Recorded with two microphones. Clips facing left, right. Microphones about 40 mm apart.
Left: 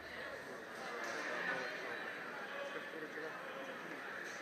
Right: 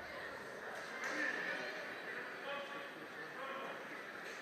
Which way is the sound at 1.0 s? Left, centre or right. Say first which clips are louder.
Right 5 dB; right.